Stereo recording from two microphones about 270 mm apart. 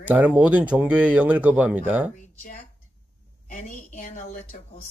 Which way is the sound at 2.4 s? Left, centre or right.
Left.